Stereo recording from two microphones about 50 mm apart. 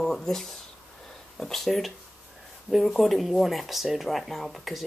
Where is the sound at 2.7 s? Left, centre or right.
Centre.